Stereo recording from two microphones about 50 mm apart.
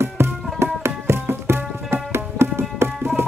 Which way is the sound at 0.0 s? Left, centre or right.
Right.